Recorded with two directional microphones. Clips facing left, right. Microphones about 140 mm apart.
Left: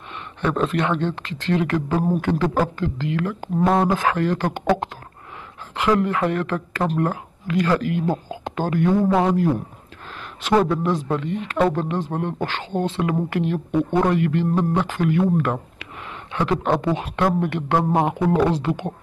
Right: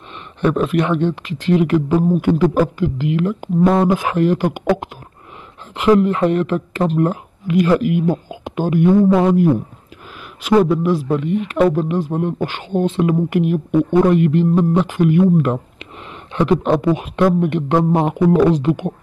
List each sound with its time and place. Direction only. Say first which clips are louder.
0.4 s speech: right 5 dB; 15° right (ahead or behind)